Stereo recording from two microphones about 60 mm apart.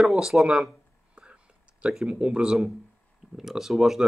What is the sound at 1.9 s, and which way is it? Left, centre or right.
Speech, centre.